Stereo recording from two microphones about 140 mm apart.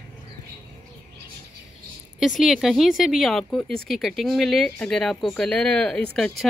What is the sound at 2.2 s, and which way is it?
Speech, centre (ahead or behind).